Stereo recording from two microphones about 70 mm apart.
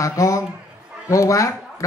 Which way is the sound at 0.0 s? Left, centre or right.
Left.